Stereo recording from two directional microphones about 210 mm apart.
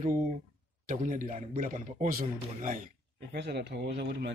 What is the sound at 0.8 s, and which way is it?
A man's voice, 35° right (ahead or behind).